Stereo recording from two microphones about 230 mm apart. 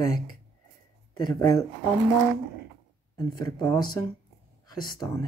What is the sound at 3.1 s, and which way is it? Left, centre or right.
Speech, centre.